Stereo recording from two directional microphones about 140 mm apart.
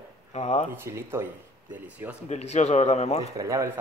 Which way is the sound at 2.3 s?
50° left (ahead or behind).